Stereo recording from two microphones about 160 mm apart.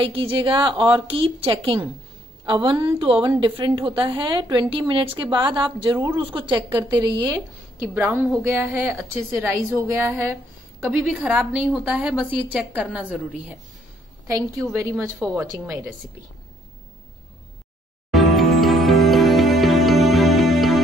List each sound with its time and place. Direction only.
0.0 s a woman's voice: 35° right (ahead or behind); by 13.6 s 10° right (ahead or behind)
14.2 s a woman's voice: 20° right (ahead or behind)
15.3 s a woman's voice: centre (ahead or behind)
18.1 s music: centre (ahead or behind)